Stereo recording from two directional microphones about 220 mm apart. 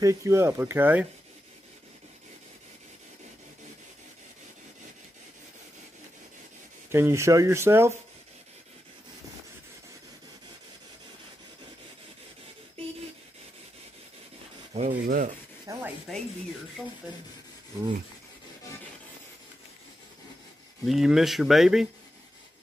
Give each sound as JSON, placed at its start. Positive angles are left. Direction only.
{"t": 0.0, "sound": "speech", "side_deg": -15}
{"t": 6.9, "sound": "speech", "side_deg": -10}
{"t": 14.7, "sound": "rub", "side_deg": -35}
{"t": 15.7, "sound": "speech", "side_deg": -15}
{"t": 20.8, "sound": "speech", "side_deg": 0}